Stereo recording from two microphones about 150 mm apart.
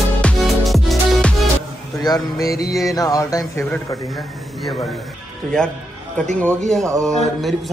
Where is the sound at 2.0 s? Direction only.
25° left (ahead or behind).